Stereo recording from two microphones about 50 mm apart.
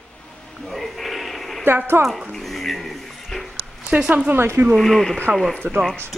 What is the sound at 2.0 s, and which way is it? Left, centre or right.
Speech, right.